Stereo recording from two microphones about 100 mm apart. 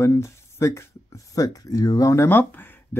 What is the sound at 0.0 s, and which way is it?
Speech, 30° left (ahead or behind).